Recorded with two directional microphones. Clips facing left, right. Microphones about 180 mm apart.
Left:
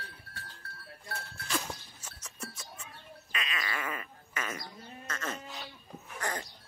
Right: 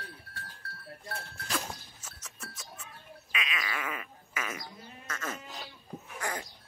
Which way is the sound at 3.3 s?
5° right (ahead or behind).